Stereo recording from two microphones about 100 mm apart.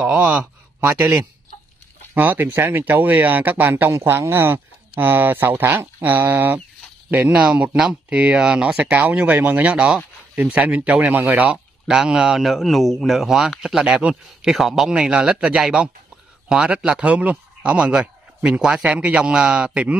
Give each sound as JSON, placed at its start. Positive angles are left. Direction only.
{"t": 0.0, "sound": "speech", "side_deg": -15}
{"t": 11.4, "sound": "speech", "side_deg": -5}